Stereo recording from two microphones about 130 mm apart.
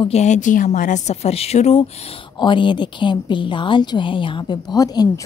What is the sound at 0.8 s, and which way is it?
Speech, 70° left (ahead or behind).